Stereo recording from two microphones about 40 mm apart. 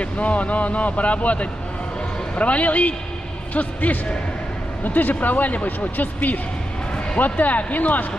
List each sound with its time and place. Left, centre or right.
0.0 s speech: left